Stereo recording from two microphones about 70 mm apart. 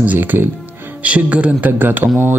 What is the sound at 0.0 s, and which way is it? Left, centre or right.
A man's voice, right.